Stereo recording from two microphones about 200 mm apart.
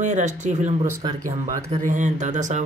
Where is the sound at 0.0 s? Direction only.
35° right (ahead or behind).